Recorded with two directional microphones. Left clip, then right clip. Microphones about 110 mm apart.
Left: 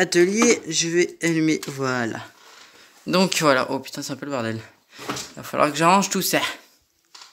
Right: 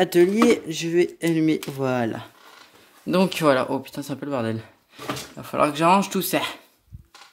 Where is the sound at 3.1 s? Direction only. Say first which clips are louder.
Left 1 dB; centre (ahead or behind).